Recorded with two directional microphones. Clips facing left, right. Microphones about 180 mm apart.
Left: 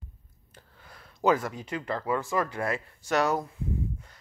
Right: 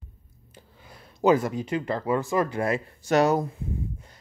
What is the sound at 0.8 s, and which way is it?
Speech, 20° right (ahead or behind).